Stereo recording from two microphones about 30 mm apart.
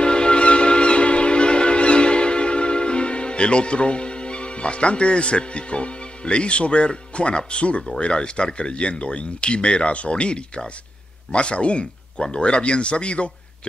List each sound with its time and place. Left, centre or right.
0.0 s train: left
8.0 s speech: left